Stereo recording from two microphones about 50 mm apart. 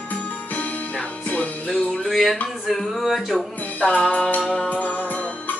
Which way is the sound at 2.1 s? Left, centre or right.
Centre.